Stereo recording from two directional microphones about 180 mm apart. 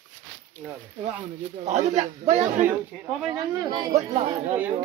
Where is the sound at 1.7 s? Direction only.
40° right (ahead or behind).